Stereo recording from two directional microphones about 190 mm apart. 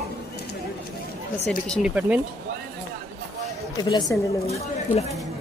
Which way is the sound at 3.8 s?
20° left (ahead or behind).